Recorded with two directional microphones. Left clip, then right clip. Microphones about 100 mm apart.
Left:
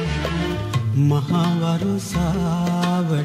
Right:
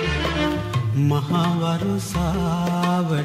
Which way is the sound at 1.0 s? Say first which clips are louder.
Even; 10° left (ahead or behind).